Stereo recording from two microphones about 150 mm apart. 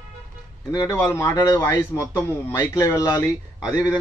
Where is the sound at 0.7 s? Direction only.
20° left (ahead or behind).